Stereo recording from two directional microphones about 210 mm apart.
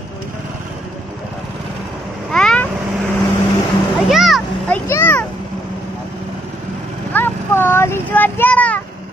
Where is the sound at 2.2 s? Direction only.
5° left (ahead or behind).